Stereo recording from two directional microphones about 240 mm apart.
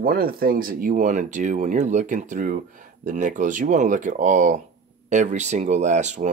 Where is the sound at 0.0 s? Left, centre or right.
Right.